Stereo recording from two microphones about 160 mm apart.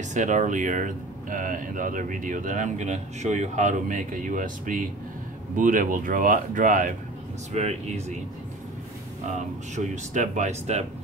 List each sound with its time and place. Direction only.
0.1 s speech: 50° right (ahead or behind)
7.5 s speech: 45° right (ahead or behind)
9.8 s speech: 50° right (ahead or behind)